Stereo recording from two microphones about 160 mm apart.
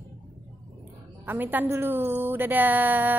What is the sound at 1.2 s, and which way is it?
A woman's voice, 10° right (ahead or behind).